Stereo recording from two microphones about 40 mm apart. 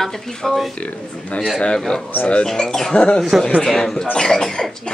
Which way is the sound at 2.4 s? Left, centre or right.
Centre.